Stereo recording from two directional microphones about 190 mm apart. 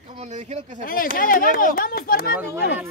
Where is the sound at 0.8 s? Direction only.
50° left (ahead or behind).